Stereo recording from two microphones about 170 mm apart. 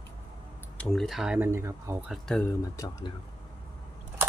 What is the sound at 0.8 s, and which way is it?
Speech, centre (ahead or behind).